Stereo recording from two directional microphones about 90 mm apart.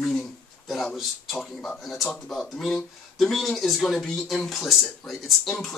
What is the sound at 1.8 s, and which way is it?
Speech, centre (ahead or behind).